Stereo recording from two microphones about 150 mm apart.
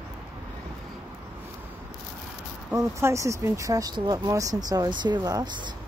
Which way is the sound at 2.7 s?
20° right (ahead or behind).